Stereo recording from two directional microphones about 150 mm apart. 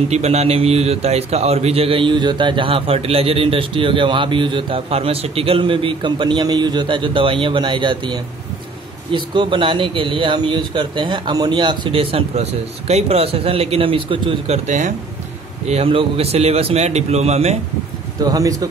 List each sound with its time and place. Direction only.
0.1 s a man's voice: 45° right (ahead or behind)
14.7 s a man's voice: 55° right (ahead or behind)
15.6 s a man's voice: 45° right (ahead or behind)
18.2 s speech: 25° right (ahead or behind)